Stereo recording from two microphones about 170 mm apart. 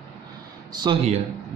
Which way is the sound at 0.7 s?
25° right (ahead or behind).